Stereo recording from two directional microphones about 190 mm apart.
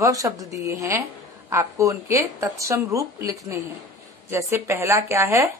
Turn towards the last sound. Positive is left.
turn(degrees=-15)  # may be behind; listen again after turning